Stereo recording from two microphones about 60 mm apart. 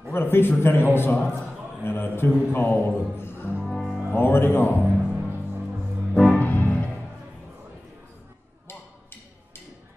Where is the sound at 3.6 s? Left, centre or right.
Centre.